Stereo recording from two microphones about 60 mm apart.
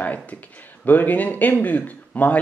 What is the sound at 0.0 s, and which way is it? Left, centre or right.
Speech, left.